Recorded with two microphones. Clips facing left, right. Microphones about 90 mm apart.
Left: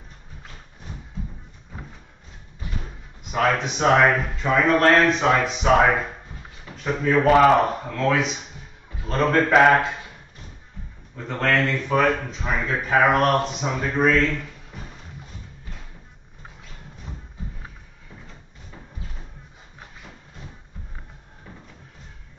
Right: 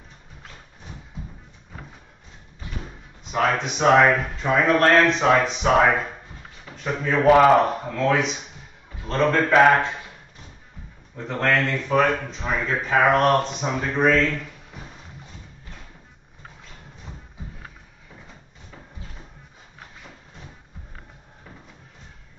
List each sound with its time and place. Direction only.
3.3 s speech: centre (ahead or behind)
7.2 s speech: 5° right (ahead or behind)
9.0 s a sound: 5° left (ahead or behind)
9.4 s speech: centre (ahead or behind)
11.1 s speech: centre (ahead or behind)